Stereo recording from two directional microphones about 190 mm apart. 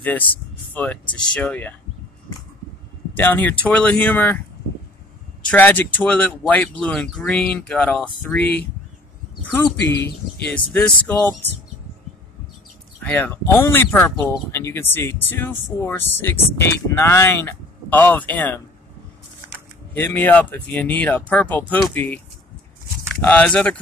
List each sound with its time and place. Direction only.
0.0 s speech: 10° left (ahead or behind)
3.2 s speech: 10° left (ahead or behind)
5.5 s speech: 10° left (ahead or behind)
10.0 s speech: 10° left (ahead or behind)
13.0 s speech: 10° left (ahead or behind)
19.9 s speech: 10° left (ahead or behind)
23.2 s speech: 5° left (ahead or behind)